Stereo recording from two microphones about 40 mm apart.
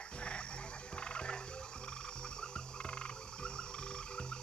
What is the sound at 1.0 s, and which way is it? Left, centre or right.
Frog, left.